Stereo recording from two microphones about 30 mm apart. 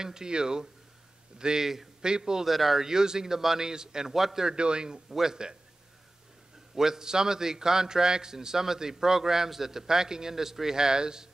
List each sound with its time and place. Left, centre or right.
0.0 s a man's voice: right
2.4 s speech: centre
2.8 s a man's voice: right
4.6 s a man's voice: right
5.1 s a man's voice: centre
6.7 s a man's voice: centre